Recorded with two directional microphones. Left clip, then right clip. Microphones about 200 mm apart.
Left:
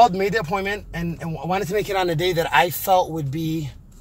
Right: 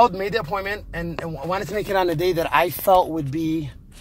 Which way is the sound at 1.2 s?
5° right (ahead or behind).